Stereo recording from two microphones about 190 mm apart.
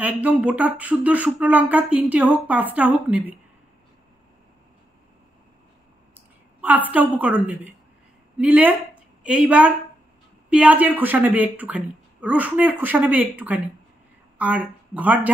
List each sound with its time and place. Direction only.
0.0 s speech: 5° right (ahead or behind)
6.6 s a woman's voice: 10° right (ahead or behind)